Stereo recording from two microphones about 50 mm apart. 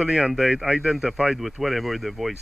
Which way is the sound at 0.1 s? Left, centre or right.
Centre.